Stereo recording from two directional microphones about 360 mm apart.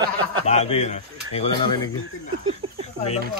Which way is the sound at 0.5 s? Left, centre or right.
Centre.